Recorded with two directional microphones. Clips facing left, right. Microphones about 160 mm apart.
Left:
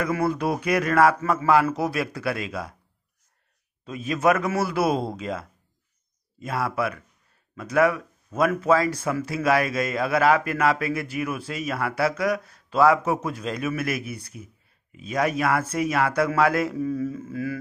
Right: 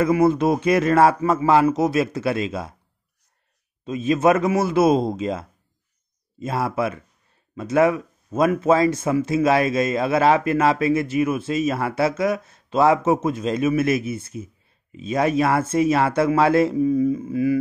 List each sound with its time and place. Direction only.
0.0 s speech: 20° right (ahead or behind)
3.8 s speech: 25° right (ahead or behind)
16.7 s a sound: 15° right (ahead or behind)